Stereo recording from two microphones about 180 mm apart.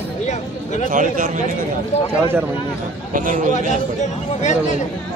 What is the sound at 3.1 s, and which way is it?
Speech, 45° right (ahead or behind).